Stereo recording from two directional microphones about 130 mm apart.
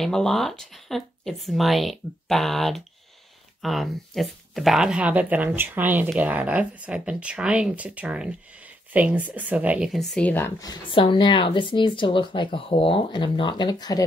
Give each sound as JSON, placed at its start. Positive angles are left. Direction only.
{"t": 0.0, "sound": "speech", "side_deg": 5}
{"t": 9.9, "sound": "a woman's voice", "side_deg": 5}
{"t": 10.9, "sound": "speech", "side_deg": 40}